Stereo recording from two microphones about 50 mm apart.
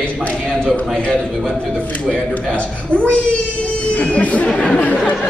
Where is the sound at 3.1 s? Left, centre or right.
Left.